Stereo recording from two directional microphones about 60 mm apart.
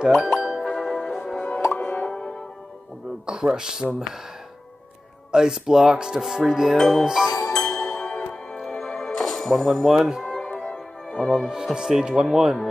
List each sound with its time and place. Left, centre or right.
0.0 s music: centre
0.7 s music: centre
3.3 s speech: centre
5.3 s speech: centre
6.8 s music: centre
7.1 s speech: centre
7.3 s music: left
7.6 s music: centre
10.7 s music: centre
11.2 s speech: centre